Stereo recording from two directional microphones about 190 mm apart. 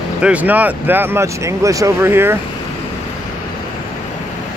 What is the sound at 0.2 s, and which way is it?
Speech, 5° right (ahead or behind).